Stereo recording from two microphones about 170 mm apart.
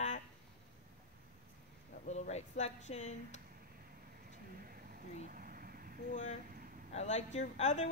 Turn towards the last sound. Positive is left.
turn(degrees=45)  # may be behind; listen again after turning